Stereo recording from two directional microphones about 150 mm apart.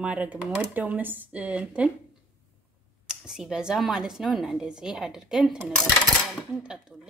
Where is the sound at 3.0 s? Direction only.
5° right (ahead or behind).